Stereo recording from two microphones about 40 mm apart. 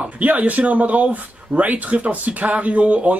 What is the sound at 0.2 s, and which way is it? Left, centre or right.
Speech, right.